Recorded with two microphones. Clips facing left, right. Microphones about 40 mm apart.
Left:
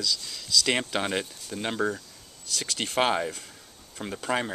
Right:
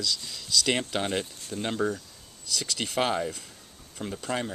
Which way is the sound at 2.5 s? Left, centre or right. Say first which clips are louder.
Left 1 dB; left.